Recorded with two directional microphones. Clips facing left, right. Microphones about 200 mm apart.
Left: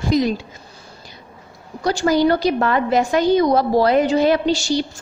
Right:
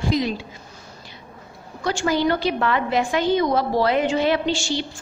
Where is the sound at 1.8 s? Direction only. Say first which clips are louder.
Left 5 dB; 40° left (ahead or behind).